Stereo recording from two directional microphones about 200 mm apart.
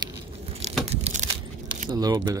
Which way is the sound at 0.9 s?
35° right (ahead or behind).